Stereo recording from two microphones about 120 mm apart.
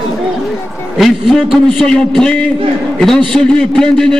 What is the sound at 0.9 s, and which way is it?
A man's voice, centre (ahead or behind).